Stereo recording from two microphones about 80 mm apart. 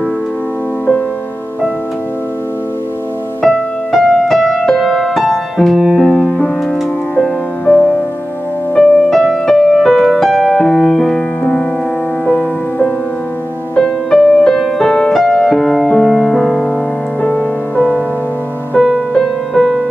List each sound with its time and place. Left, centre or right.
3.9 s music: centre
8.7 s music: centre
17.2 s music: centre
18.8 s music: centre